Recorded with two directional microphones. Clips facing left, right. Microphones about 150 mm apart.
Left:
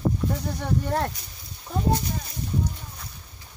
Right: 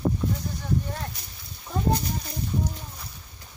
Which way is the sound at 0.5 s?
70° left (ahead or behind).